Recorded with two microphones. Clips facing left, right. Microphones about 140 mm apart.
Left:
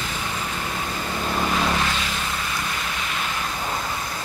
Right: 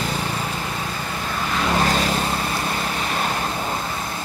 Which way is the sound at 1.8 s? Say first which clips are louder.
Right 6 dB; 40° right (ahead or behind).